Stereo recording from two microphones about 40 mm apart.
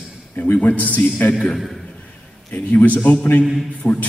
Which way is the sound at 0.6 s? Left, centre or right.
Left.